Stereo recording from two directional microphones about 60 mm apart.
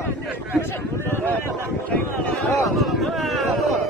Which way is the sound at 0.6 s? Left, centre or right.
Left.